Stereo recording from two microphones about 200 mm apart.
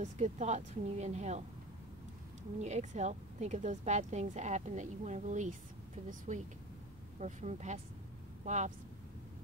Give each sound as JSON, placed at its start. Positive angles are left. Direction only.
{"t": 0.0, "sound": "speech", "side_deg": -35}
{"t": 2.6, "sound": "speech", "side_deg": -35}